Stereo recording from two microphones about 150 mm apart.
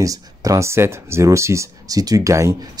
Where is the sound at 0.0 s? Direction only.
20° right (ahead or behind).